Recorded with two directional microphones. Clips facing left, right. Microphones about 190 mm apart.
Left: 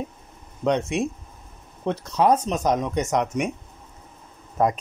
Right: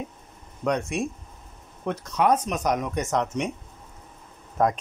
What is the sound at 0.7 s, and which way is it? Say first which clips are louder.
Speech: left 3 dB; 20° left (ahead or behind).